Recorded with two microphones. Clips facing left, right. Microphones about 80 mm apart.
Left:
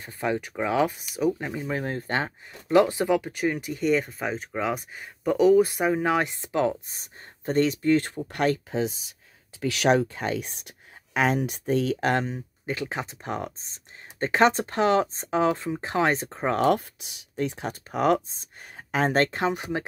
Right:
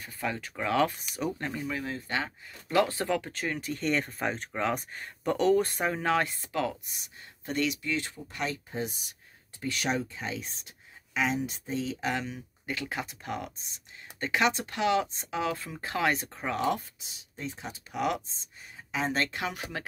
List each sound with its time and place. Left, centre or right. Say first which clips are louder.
0.0 s speech: left 6 dB; left
0.9 s speech: left 8 dB; centre
1.7 s speech: left 5 dB; left
2.7 s speech: left 6 dB; centre; by 8.2 s left
8.3 s speech: left 12 dB; left
9.6 s speech: left 9 dB; left
12.6 s speech: left 4 dB; left
16.5 s speech: left 7 dB; left
17.9 s speech: left 8 dB; left
18.8 s speech: left 7 dB; left
19.5 s speech: left 8 dB; left